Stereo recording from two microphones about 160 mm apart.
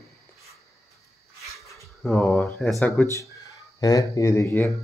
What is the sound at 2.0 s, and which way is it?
Speech, 10° left (ahead or behind).